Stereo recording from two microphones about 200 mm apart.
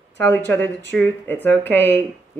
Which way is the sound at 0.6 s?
60° right (ahead or behind).